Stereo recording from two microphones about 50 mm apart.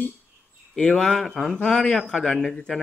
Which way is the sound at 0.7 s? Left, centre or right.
Centre.